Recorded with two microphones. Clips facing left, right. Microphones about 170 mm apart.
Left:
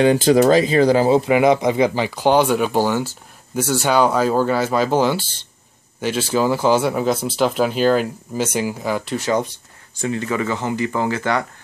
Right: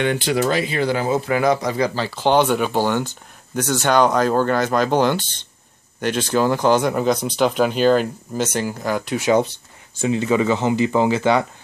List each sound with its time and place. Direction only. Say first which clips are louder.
0.0 s speech: left 6 dB; 35° left (ahead or behind)
1.2 s speech: left 4 dB; 20° left (ahead or behind); by 9.2 s 5° left (ahead or behind)
10.0 s speech: right 4 dB; 20° right (ahead or behind)